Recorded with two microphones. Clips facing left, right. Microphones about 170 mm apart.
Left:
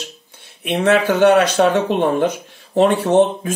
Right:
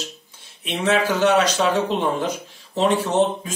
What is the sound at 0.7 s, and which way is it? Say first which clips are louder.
Speech: left 5 dB; 60° left (ahead or behind).